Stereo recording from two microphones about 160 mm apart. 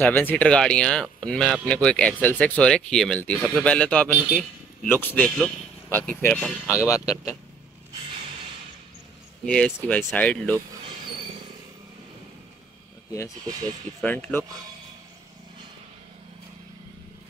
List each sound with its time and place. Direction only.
0.0 s speech: 10° left (ahead or behind)
6.6 s speech: 10° right (ahead or behind)
6.9 s speech: 20° left (ahead or behind)
9.8 s speech: 10° left (ahead or behind)
14.0 s speech: 10° left (ahead or behind)